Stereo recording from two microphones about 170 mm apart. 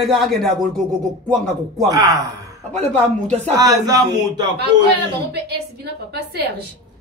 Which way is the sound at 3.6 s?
20° right (ahead or behind).